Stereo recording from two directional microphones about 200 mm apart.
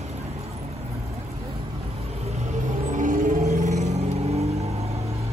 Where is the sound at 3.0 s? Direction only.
40° right (ahead or behind).